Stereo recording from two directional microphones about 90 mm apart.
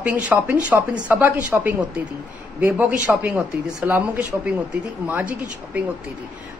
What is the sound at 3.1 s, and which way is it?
Speech, 5° right (ahead or behind).